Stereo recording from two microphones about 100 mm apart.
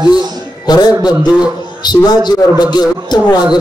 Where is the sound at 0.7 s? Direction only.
45° left (ahead or behind).